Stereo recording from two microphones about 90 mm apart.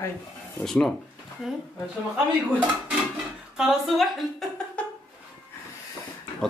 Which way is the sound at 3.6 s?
Centre (ahead or behind).